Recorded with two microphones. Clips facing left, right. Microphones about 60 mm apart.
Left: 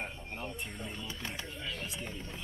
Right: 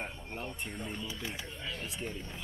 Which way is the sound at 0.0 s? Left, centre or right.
Centre.